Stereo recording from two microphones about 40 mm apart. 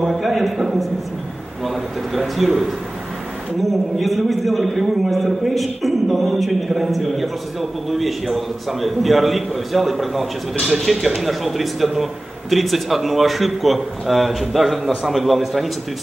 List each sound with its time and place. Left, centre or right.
0.0 s a man's voice: centre
2.1 s a man's voice: centre
4.0 s a man's voice: centre